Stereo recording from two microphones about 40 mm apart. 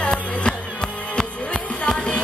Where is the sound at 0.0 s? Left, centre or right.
Left.